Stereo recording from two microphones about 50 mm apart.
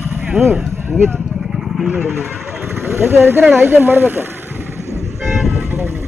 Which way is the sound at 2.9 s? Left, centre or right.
Right.